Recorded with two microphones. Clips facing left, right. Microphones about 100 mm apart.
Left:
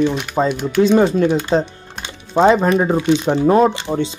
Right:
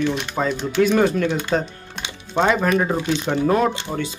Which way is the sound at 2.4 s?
30° left (ahead or behind).